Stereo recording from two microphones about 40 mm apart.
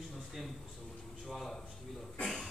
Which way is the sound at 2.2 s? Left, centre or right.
Centre.